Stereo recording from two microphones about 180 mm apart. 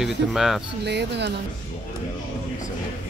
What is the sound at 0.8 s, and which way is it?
Speech, 70° right (ahead or behind).